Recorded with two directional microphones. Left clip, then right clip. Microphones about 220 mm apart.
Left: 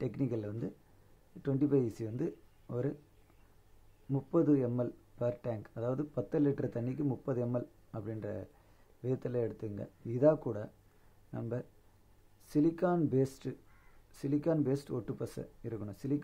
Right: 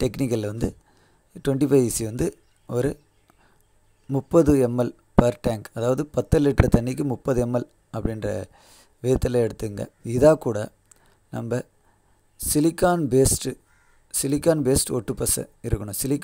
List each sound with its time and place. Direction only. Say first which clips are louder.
0.0 s speech: right 12 dB; 40° right (ahead or behind)
4.1 s speech: right 12 dB; 35° right (ahead or behind)